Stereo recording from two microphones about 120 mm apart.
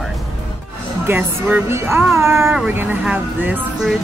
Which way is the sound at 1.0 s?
20° right (ahead or behind).